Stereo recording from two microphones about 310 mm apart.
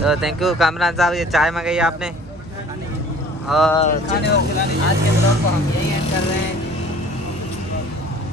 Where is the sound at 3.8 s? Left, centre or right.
Left.